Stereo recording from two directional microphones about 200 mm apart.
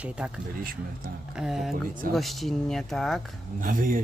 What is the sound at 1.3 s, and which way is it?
Speech, centre (ahead or behind).